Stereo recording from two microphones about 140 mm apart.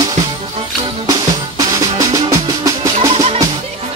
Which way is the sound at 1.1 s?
25° right (ahead or behind).